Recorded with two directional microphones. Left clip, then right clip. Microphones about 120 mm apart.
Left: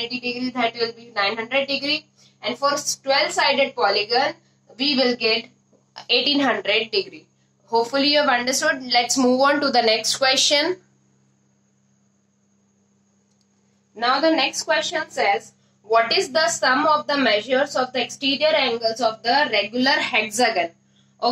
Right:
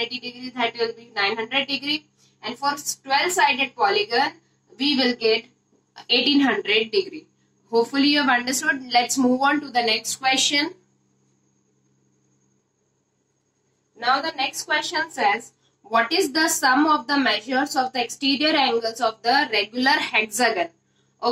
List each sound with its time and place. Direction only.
0.0 s a woman's voice: 30° left (ahead or behind)
9.3 s a woman's voice: 25° left (ahead or behind)
13.9 s a woman's voice: 30° left (ahead or behind)
16.9 s a woman's voice: 25° left (ahead or behind)